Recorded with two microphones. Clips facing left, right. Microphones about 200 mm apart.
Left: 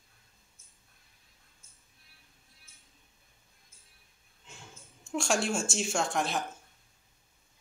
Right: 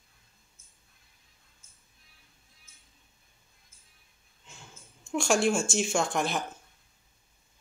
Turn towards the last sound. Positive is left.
turn(degrees=0)  # may be behind; listen again after turning